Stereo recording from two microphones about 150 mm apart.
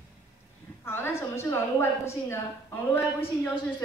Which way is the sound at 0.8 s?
15° left (ahead or behind).